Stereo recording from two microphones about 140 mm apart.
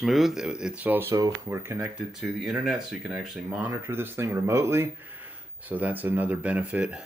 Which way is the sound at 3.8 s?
15° right (ahead or behind).